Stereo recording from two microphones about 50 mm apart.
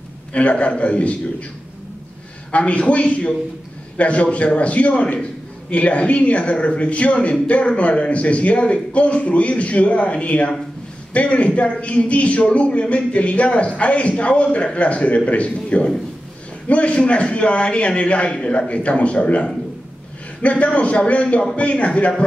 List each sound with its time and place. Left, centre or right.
0.3 s speech: left
2.5 s speech: left
20.4 s speech: left